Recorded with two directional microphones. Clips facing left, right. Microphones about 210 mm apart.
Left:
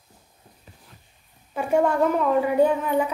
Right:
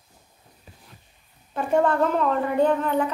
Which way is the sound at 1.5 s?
10° left (ahead or behind).